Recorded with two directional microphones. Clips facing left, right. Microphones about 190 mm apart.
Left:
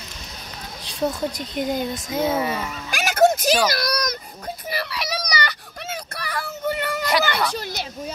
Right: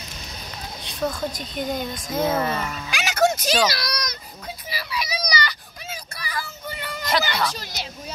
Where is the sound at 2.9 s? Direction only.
50° left (ahead or behind).